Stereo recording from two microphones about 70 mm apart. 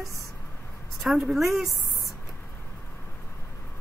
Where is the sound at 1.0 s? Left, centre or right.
Centre.